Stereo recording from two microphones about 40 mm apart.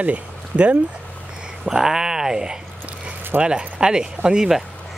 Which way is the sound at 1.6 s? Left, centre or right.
Centre.